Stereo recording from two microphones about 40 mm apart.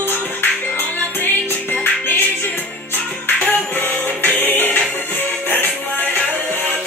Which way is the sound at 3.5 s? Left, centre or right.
Left.